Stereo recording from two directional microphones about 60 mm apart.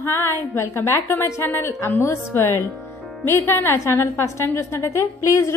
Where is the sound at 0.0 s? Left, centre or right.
Left.